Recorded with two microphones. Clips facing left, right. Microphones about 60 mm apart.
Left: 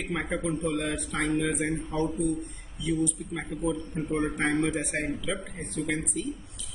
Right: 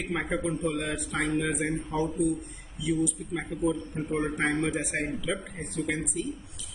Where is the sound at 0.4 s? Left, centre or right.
Right.